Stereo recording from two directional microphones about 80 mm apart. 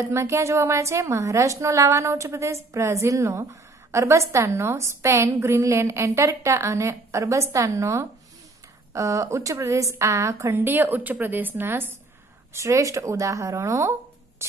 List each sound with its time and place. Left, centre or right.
0.1 s a woman's voice: right
10.6 s a woman's voice: right
12.5 s a woman's voice: right